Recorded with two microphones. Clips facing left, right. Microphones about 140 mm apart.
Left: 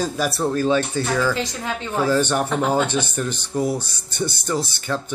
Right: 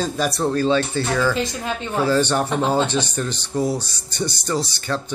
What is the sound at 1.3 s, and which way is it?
Speech, 20° right (ahead or behind).